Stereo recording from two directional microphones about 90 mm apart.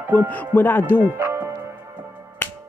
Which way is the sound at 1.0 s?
25° right (ahead or behind).